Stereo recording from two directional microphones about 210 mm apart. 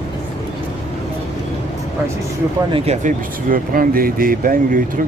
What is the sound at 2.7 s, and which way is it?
Speech, 25° right (ahead or behind).